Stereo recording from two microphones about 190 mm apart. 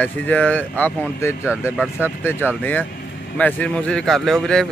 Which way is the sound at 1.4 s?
5° right (ahead or behind).